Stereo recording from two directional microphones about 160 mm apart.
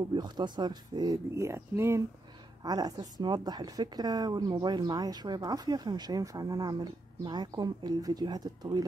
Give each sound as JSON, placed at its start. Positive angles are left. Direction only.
{"t": 0.1, "sound": "speech", "side_deg": -25}